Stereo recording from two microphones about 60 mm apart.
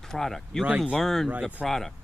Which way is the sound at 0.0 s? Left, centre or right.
Centre.